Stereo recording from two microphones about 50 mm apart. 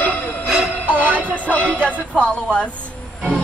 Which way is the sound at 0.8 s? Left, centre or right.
Right.